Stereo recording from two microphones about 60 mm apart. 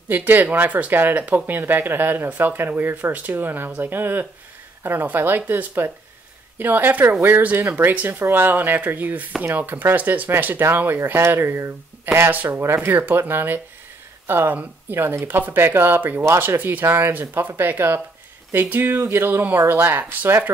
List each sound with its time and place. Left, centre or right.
0.1 s speech: right
12.3 s speech: right